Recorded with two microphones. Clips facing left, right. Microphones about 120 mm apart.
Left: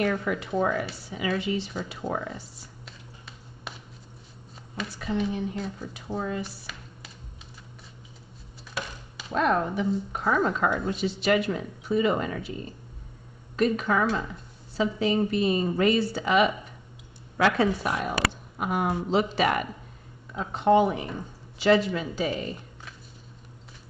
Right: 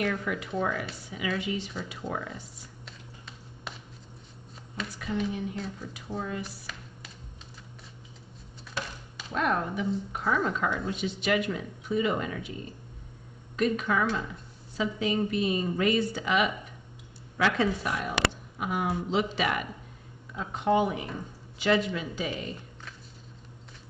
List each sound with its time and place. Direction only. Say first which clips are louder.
0.0 s a woman's voice: left 4 dB; 35° left (ahead or behind)
2.8 s a sound: even; centre (ahead or behind)
5.3 s a woman's voice: left 3 dB; 35° left (ahead or behind)
6.4 s a sound: left 2 dB; centre (ahead or behind)
9.3 s a woman's voice: left 4 dB; 35° left (ahead or behind)
13.6 s a woman's voice: left 3 dB; 35° left (ahead or behind)
20.5 s a woman's voice: left 5 dB; 35° left (ahead or behind)